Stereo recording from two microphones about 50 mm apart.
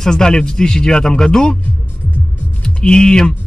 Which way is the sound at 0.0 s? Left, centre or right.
Centre.